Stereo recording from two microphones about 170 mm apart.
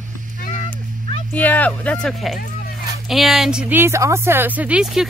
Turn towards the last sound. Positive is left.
turn(degrees=-10)  # may be behind; listen again after turning